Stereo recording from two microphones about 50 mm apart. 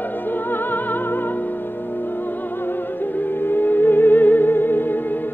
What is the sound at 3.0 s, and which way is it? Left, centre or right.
Music, left.